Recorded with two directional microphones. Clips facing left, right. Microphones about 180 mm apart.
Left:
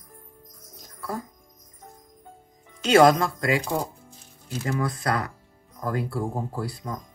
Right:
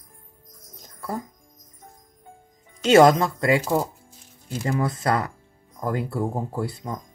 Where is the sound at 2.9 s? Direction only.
25° right (ahead or behind).